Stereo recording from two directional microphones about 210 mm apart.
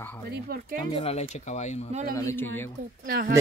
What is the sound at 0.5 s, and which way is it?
Speech, 45° right (ahead or behind).